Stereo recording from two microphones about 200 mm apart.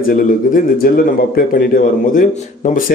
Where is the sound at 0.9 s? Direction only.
50° left (ahead or behind).